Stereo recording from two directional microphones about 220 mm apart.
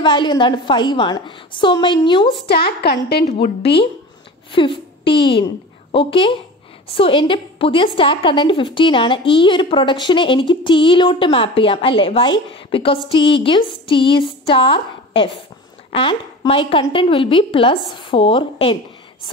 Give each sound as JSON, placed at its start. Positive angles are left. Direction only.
{"t": 0.0, "sound": "a woman's voice", "side_deg": 20}
{"t": 2.4, "sound": "a woman's voice", "side_deg": 45}
{"t": 3.3, "sound": "a woman's voice", "side_deg": 30}
{"t": 5.1, "sound": "a woman's voice", "side_deg": 55}
{"t": 5.9, "sound": "a woman's voice", "side_deg": 25}